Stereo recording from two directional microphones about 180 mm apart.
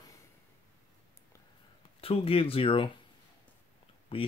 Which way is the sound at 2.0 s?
30° left (ahead or behind).